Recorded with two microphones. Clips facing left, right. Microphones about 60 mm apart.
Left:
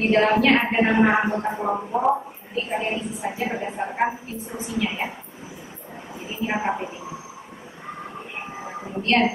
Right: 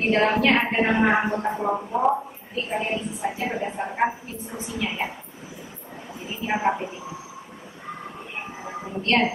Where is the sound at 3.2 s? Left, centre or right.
Centre.